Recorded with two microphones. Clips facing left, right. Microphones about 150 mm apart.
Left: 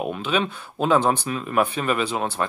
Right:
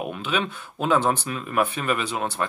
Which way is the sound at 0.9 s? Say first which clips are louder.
Left 2 dB; 10° left (ahead or behind).